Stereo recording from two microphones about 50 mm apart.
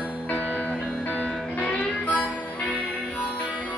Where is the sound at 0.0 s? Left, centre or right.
Right.